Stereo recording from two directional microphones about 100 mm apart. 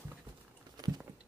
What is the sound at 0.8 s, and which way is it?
Patter, 40° right (ahead or behind).